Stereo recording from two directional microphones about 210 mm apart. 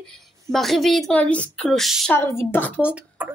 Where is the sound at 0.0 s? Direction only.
Centre (ahead or behind).